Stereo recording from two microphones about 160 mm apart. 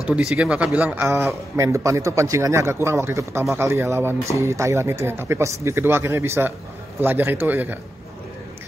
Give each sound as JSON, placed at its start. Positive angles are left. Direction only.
{"t": 0.0, "sound": "a man's voice", "side_deg": -5}